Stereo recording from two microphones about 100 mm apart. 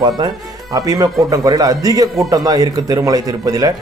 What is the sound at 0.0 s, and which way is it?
A man's voice, 40° right (ahead or behind).